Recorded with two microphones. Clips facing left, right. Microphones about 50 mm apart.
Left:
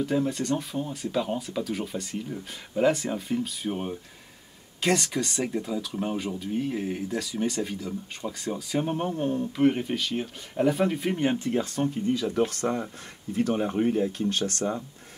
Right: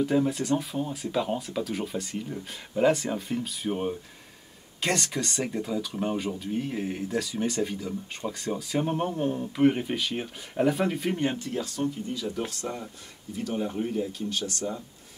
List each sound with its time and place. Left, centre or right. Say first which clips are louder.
0.0 s speech: right 1 dB; centre
11.3 s speech: left 4 dB; left